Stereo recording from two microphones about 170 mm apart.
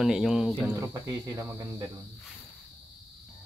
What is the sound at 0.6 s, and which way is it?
Speech, 15° right (ahead or behind).